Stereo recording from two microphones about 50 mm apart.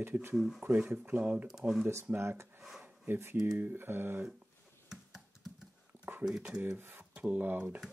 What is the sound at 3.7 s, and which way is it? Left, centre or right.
Speech, right.